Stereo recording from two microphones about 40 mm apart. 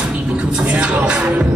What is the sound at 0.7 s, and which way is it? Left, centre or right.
Music, right.